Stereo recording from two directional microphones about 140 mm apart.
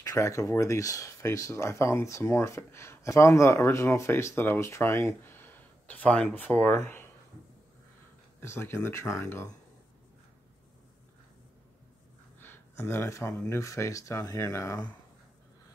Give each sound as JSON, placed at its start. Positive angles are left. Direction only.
{"t": 0.0, "sound": "speech", "side_deg": 25}
{"t": 8.4, "sound": "speech", "side_deg": 15}
{"t": 12.4, "sound": "a sound", "side_deg": 15}
{"t": 13.4, "sound": "speech", "side_deg": 20}